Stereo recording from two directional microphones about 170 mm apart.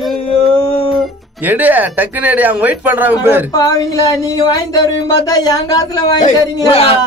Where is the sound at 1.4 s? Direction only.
10° right (ahead or behind).